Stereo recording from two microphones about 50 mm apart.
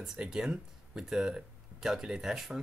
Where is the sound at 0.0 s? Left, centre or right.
Centre.